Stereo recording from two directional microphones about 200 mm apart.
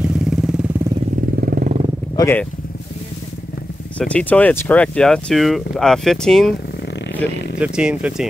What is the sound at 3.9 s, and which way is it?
Speech, 5° left (ahead or behind).